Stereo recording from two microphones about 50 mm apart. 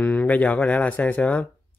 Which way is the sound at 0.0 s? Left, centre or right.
Left.